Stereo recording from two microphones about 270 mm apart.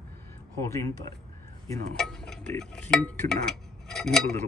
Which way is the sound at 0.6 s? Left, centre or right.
Centre.